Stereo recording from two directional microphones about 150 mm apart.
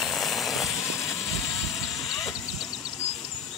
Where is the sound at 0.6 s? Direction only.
20° left (ahead or behind).